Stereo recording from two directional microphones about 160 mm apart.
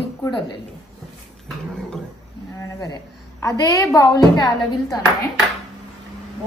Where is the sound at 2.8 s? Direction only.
20° left (ahead or behind).